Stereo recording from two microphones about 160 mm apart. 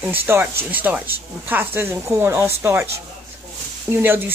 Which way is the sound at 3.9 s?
15° right (ahead or behind).